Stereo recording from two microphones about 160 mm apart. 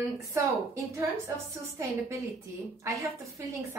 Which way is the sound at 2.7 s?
20° right (ahead or behind).